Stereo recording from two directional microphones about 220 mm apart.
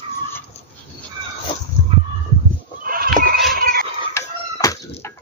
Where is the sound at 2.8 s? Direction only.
40° right (ahead or behind).